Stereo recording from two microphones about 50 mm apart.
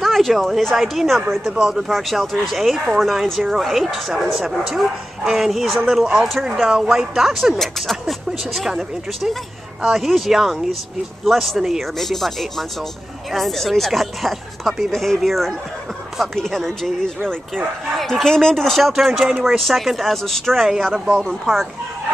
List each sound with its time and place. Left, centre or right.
0.0 s a woman's voice: centre
20.5 s speech: centre